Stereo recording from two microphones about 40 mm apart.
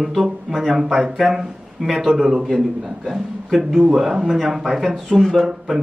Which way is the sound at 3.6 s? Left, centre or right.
Centre.